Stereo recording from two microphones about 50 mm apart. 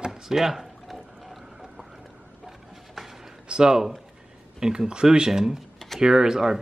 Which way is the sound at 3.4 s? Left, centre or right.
Centre.